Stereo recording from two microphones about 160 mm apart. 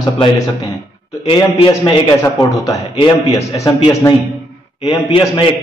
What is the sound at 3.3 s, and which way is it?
Speech, 30° left (ahead or behind).